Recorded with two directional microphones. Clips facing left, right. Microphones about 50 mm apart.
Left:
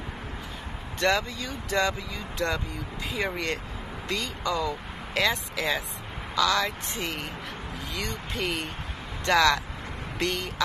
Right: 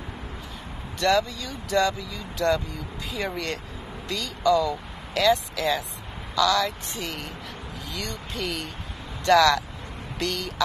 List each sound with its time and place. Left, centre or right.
0.9 s speech: left